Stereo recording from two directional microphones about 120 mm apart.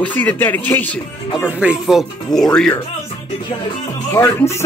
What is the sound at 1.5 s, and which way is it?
Speech, 10° right (ahead or behind).